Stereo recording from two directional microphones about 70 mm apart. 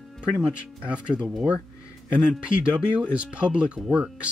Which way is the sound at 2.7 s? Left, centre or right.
Centre.